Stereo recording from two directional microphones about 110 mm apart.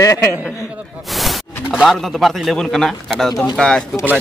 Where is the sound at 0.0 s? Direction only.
30° left (ahead or behind).